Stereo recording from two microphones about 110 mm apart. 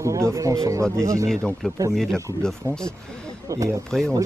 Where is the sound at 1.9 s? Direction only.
5° left (ahead or behind).